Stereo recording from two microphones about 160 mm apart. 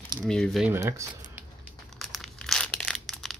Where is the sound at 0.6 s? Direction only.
15° right (ahead or behind).